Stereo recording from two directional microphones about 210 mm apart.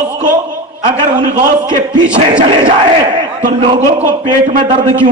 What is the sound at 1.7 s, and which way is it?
Speech, 25° right (ahead or behind).